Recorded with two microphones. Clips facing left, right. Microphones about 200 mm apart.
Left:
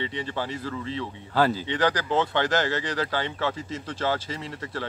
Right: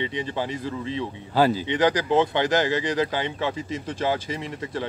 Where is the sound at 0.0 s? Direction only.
15° right (ahead or behind).